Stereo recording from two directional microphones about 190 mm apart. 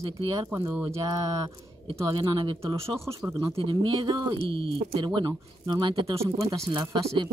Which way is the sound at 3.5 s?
25° right (ahead or behind).